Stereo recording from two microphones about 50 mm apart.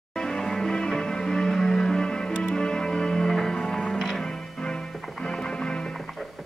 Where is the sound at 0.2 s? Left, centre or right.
Centre.